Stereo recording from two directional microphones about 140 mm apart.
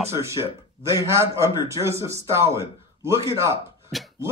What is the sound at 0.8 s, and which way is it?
Speech, 20° right (ahead or behind).